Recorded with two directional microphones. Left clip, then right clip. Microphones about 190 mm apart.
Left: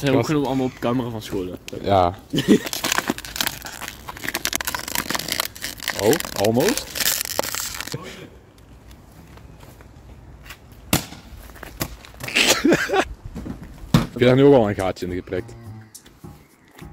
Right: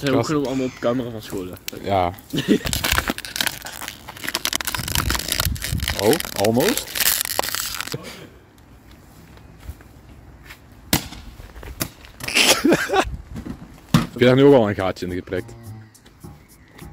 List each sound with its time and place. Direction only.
0.3 s speech: 50° left (ahead or behind)
1.8 s speech: 20° left (ahead or behind)
2.6 s crumpling: 5° right (ahead or behind)
12.3 s a sound: 15° right (ahead or behind)
14.1 s speech: 15° right (ahead or behind)